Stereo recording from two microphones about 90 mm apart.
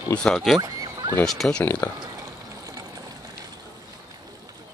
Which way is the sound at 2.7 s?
40° right (ahead or behind).